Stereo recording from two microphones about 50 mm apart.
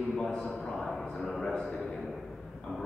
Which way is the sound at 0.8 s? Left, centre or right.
Centre.